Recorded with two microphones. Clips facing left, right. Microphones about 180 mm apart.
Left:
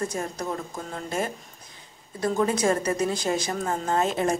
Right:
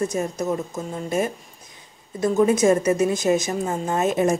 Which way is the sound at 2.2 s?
25° right (ahead or behind).